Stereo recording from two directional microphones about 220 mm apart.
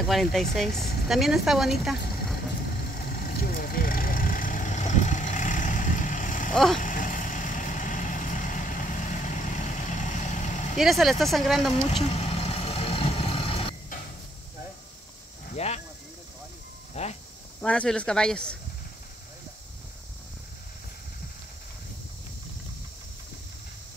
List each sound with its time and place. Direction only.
0.0 s speech: centre (ahead or behind)
3.1 s vehicle: 40° left (ahead or behind)
6.5 s speech: centre (ahead or behind)
6.8 s vehicle: 35° left (ahead or behind)
10.8 s speech: centre (ahead or behind)
11.7 s vehicle: 25° left (ahead or behind)
15.5 s snake: 30° left (ahead or behind)
16.9 s speech: 30° left (ahead or behind)
17.6 s speech: 5° left (ahead or behind)